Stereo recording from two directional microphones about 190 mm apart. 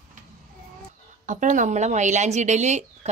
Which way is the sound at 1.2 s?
40° right (ahead or behind).